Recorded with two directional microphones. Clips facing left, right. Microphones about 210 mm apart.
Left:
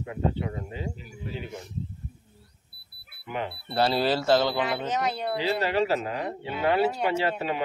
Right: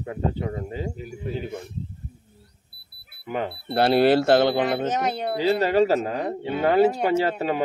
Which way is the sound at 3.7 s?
60° right (ahead or behind).